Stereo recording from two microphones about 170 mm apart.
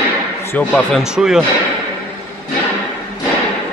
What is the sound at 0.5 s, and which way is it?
Speech, 10° left (ahead or behind).